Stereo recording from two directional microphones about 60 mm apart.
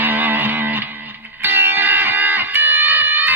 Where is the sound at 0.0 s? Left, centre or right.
Right.